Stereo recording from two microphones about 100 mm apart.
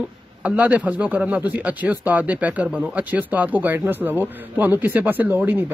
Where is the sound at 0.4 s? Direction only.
15° right (ahead or behind).